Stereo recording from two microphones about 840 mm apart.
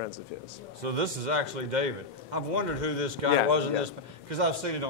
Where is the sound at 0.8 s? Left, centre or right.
Right.